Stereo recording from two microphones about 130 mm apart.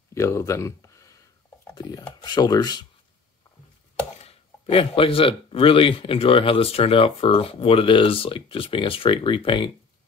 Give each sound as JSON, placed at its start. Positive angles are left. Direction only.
{"t": 0.1, "sound": "speech", "side_deg": 20}
{"t": 4.2, "sound": "speech", "side_deg": 50}